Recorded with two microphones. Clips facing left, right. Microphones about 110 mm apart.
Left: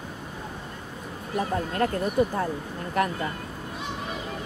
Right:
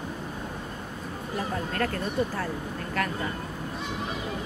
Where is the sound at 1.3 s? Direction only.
25° left (ahead or behind).